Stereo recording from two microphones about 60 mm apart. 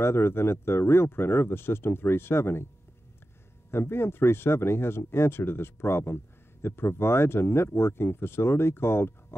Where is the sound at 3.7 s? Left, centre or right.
Left.